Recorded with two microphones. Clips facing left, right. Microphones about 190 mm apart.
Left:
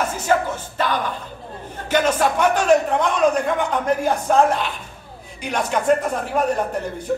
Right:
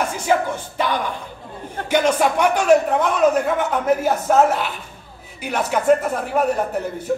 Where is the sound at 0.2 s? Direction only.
10° right (ahead or behind).